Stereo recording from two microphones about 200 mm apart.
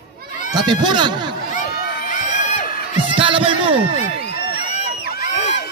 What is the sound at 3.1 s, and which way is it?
Heart sounds, 25° right (ahead or behind).